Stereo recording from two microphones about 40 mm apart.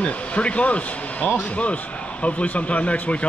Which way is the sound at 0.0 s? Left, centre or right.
Left.